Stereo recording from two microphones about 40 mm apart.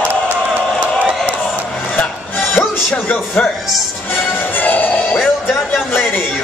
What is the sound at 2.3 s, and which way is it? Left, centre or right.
Music, left.